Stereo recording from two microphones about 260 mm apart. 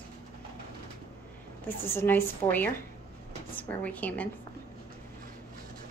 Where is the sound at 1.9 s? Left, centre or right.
Centre.